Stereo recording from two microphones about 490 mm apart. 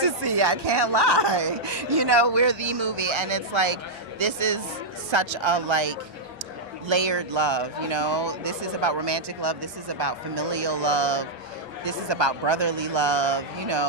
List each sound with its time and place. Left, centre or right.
0.0 s speech: right